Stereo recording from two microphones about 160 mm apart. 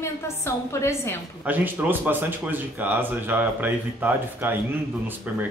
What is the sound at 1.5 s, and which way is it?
Speech, 10° right (ahead or behind).